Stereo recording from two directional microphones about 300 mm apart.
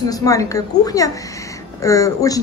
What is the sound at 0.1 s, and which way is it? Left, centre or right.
A woman's voice, centre.